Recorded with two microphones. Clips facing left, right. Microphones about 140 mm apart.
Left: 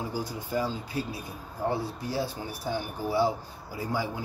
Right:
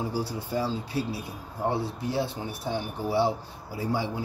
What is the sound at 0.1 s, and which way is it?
Speech, 35° right (ahead or behind).